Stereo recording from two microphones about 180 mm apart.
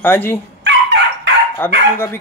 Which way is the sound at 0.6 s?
75° right (ahead or behind).